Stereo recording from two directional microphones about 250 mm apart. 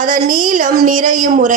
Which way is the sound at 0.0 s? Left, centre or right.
Right.